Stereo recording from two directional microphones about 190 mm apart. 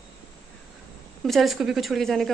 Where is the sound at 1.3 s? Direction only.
Centre (ahead or behind).